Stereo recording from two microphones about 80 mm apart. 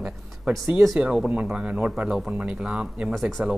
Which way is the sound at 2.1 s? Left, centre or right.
Centre.